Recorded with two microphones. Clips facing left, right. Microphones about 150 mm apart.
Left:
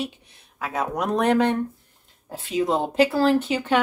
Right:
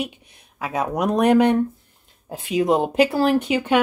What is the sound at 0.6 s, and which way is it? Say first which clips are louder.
Speech: right 3 dB; 15° right (ahead or behind).